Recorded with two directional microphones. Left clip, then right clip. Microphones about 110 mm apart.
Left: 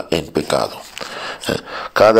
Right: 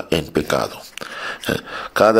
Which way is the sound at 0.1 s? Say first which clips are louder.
Left 1 dB; 50° right (ahead or behind).